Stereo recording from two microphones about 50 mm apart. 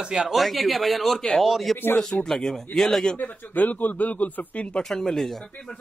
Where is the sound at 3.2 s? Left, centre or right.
Left.